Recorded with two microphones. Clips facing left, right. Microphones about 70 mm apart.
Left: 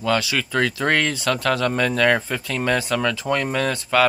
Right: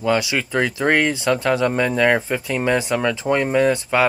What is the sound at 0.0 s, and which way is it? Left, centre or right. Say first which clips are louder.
Speech: right 2 dB; right.